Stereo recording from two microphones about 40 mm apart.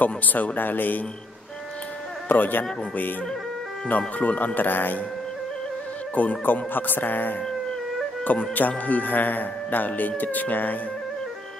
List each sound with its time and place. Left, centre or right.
0.0 s speech: left
2.2 s speech: left
4.2 s speech: left
4.6 s speech: left
6.1 s speech: left
8.5 s speech: left